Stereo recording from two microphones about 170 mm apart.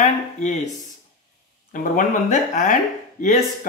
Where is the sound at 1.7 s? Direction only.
50° left (ahead or behind).